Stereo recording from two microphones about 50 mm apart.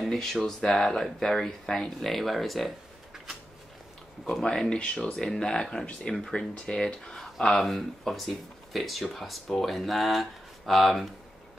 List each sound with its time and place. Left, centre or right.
0.0 s speech: centre
4.2 s speech: centre